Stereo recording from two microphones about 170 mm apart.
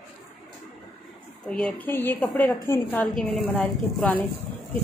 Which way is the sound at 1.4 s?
5° left (ahead or behind).